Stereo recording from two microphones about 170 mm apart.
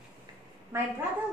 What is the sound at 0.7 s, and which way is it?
Speech, 15° right (ahead or behind).